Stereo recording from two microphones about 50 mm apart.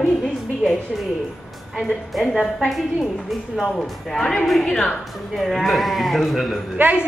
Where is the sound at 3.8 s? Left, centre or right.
Centre.